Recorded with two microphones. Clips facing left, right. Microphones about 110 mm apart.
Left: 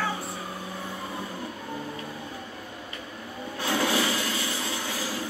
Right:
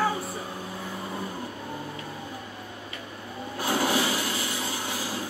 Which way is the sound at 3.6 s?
30° right (ahead or behind).